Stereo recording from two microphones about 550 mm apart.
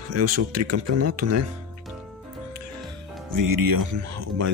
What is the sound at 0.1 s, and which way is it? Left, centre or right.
Speech, right.